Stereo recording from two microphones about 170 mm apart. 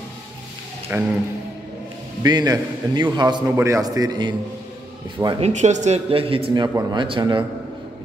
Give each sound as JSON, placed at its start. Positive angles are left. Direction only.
{"t": 0.9, "sound": "speech", "side_deg": -10}
{"t": 2.2, "sound": "a man's voice", "side_deg": -25}
{"t": 5.4, "sound": "speech", "side_deg": -45}